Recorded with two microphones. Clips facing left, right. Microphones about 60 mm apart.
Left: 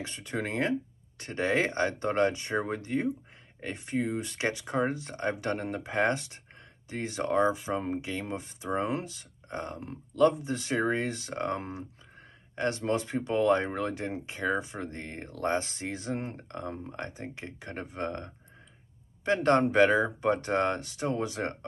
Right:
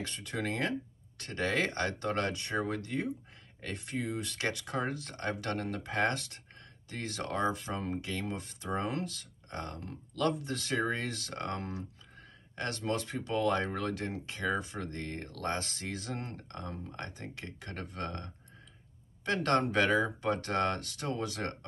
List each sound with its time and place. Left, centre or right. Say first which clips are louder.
0.0 s speech: left 2 dB; left